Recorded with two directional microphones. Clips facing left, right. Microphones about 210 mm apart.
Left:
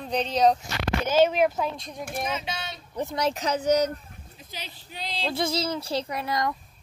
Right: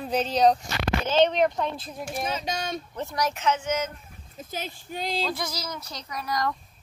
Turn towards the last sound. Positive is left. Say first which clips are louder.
# left 1 dB
turn(degrees=25)  # may be behind; listen again after turning